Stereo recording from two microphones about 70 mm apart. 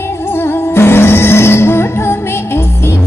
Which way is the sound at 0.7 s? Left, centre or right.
Left.